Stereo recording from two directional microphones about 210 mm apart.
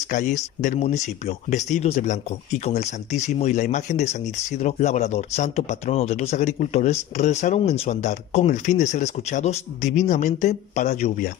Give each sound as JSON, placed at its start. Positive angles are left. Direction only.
{"t": 0.1, "sound": "speech", "side_deg": 35}